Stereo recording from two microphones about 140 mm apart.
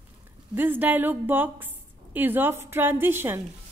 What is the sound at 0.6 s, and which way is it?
A woman's voice, 15° right (ahead or behind).